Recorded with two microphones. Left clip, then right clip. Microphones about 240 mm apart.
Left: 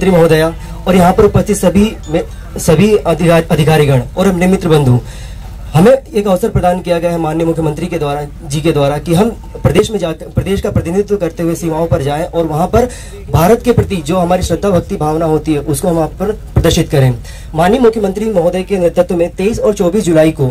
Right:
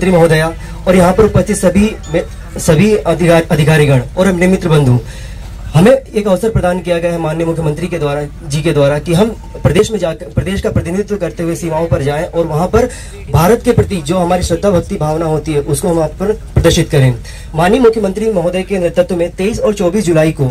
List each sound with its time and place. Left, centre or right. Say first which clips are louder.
0.1 s speech: left 1 dB; left